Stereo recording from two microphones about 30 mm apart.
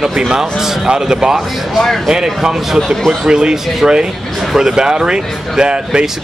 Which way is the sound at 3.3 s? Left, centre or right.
Right.